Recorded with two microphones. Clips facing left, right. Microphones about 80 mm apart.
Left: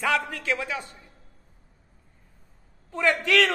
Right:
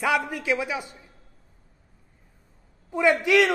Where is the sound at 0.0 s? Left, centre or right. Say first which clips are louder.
Right 1 dB; centre.